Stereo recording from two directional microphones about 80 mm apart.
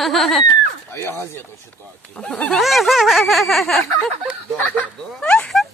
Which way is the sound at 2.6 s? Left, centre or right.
Centre.